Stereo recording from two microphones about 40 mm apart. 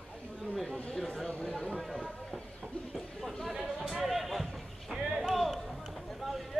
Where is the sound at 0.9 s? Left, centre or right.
Centre.